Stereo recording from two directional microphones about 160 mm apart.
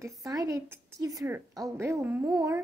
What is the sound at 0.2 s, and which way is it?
A woman's voice, 20° right (ahead or behind).